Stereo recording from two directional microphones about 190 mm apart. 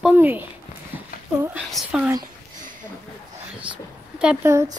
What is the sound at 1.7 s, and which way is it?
Speech, 5° right (ahead or behind).